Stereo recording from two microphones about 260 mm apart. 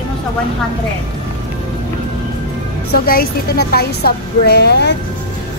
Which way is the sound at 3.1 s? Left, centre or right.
Left.